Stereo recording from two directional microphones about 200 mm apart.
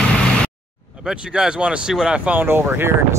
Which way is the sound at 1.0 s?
5° right (ahead or behind).